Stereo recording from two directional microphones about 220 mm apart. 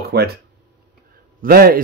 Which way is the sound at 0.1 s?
45° right (ahead or behind).